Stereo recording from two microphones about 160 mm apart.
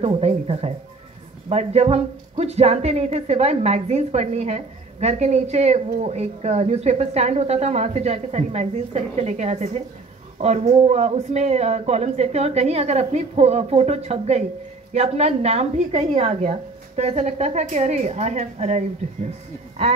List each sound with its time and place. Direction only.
0.0 s speech: 40° right (ahead or behind)